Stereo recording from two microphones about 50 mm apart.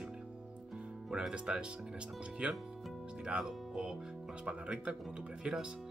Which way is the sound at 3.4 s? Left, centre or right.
Centre.